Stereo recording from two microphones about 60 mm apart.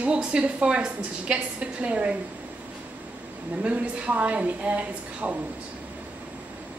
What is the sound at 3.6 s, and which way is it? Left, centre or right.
A woman's voice, centre.